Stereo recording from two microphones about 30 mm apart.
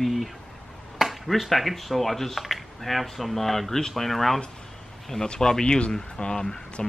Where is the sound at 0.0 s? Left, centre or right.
Centre.